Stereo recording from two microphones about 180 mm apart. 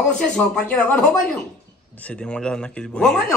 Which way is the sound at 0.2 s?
5° left (ahead or behind).